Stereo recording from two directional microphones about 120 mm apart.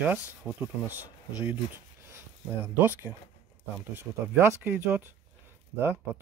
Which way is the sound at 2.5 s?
20° right (ahead or behind).